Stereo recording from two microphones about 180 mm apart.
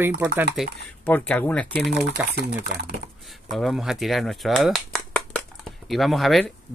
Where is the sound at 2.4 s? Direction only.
65° right (ahead or behind).